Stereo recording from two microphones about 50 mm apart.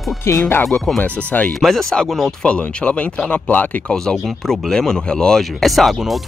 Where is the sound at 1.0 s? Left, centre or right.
Left.